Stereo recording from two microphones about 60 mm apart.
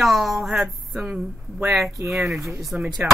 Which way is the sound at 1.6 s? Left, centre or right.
Centre.